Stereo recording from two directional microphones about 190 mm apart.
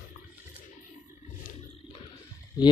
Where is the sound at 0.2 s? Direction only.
45° left (ahead or behind).